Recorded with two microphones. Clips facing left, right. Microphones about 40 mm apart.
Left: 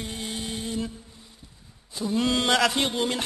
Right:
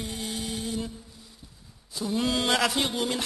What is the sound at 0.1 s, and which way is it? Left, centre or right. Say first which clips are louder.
Music: even; centre.